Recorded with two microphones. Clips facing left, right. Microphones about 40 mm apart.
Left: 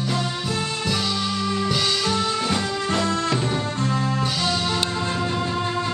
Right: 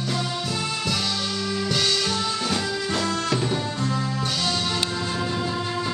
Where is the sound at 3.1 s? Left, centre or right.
Left.